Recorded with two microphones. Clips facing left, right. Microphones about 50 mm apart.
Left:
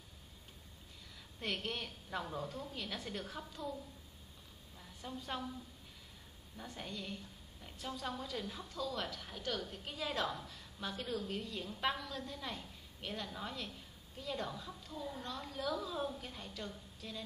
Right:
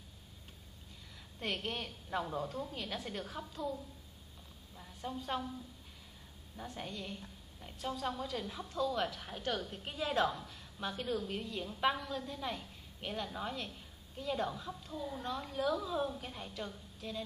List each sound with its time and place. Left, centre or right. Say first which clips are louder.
1.4 s a woman's voice: right 2 dB; centre
6.5 s a woman's voice: right 2 dB; centre
8.6 s a woman's voice: right 9 dB; centre